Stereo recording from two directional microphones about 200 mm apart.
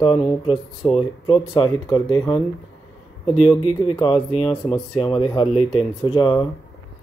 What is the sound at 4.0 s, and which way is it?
Speech, 25° left (ahead or behind).